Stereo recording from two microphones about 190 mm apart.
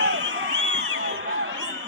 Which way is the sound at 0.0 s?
75° right (ahead or behind).